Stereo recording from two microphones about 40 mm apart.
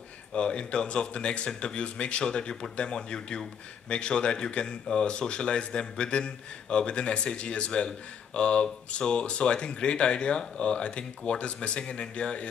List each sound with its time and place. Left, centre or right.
0.3 s speech: left